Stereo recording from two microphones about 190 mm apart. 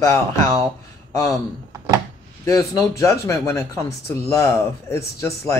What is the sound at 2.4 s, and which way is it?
Speech, 15° left (ahead or behind).